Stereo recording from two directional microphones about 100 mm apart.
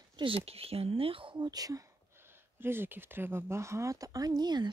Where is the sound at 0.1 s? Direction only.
60° right (ahead or behind).